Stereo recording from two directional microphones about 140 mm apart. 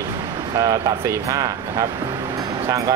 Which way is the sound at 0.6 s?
25° right (ahead or behind).